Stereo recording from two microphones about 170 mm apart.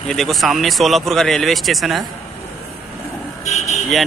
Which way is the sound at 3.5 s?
40° left (ahead or behind).